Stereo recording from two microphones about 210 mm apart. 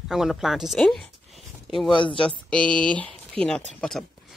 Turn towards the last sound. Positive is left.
turn(degrees=5)  # may be behind; listen again after turning